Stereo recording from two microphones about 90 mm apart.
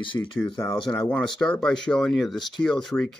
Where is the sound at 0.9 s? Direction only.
15° left (ahead or behind).